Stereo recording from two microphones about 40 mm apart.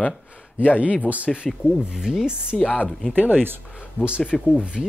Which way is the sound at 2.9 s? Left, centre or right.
Left.